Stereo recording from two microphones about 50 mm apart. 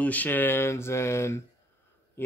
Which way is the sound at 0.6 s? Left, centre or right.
Left.